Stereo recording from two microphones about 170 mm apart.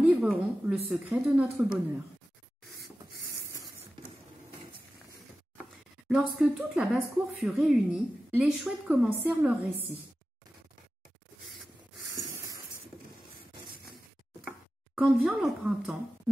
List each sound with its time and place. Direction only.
0.0 s a woman's voice: 5° right (ahead or behind)
6.0 s a woman's voice: 5° right (ahead or behind)
12.1 s a sound: 15° right (ahead or behind)
15.0 s a woman's voice: 10° right (ahead or behind)